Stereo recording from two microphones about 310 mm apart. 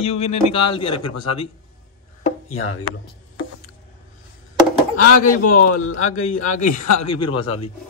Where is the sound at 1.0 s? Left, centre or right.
Left.